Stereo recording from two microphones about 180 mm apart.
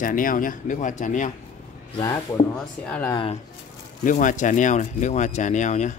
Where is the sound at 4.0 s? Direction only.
45° left (ahead or behind).